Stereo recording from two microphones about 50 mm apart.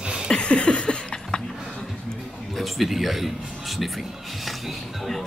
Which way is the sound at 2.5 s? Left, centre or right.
Centre.